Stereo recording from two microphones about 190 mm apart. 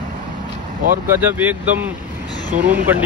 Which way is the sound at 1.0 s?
10° right (ahead or behind).